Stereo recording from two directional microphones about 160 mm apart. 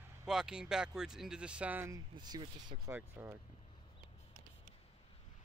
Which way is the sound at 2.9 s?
15° right (ahead or behind).